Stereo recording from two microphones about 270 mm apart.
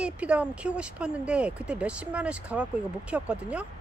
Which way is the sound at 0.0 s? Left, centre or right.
Centre.